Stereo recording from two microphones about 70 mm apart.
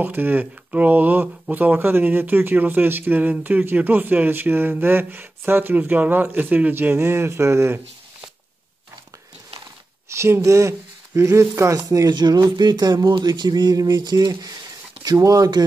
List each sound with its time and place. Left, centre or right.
0.0 s speech: right
10.0 s speech: right
12.1 s speech: right
15.0 s speech: right